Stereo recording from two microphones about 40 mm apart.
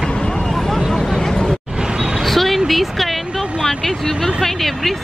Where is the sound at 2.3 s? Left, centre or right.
Centre.